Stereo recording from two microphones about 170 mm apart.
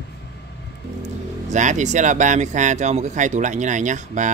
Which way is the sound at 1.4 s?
45° right (ahead or behind).